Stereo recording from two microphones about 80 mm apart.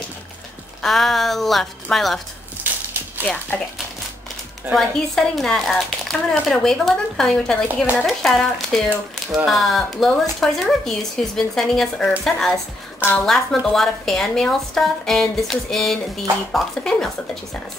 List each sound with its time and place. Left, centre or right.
0.8 s a woman's voice: centre
3.3 s speech: centre
4.7 s a woman's voice: centre